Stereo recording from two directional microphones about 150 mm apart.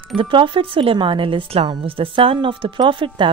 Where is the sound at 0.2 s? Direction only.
35° right (ahead or behind).